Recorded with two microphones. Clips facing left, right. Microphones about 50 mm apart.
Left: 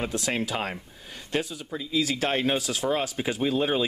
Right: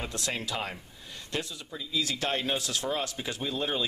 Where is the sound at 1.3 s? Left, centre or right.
Left.